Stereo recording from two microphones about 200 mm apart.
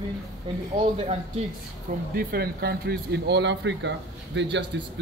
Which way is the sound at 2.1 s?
50° right (ahead or behind).